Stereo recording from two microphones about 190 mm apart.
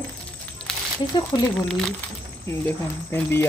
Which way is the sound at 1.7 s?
5° left (ahead or behind).